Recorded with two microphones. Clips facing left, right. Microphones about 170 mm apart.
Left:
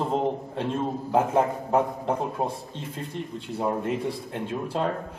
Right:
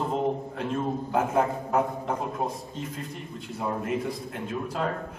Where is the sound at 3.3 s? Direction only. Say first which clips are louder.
Left 3 dB; 30° left (ahead or behind).